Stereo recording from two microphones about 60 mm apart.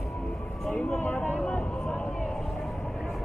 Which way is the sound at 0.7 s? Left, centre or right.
Left.